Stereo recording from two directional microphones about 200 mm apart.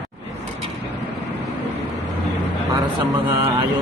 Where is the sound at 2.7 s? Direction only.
25° right (ahead or behind).